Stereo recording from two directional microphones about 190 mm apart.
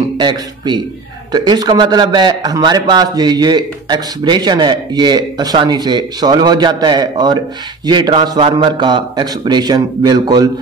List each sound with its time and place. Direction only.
0.2 s a man's voice: 25° right (ahead or behind)